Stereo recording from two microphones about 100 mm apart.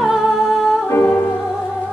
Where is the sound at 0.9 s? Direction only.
25° left (ahead or behind).